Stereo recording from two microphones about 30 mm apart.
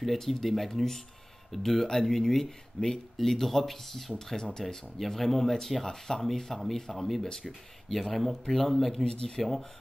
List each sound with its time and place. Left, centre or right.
0.0 s speech: centre
6.5 s speech: centre
8.1 s speech: centre
9.0 s speech: left
9.4 s speech: centre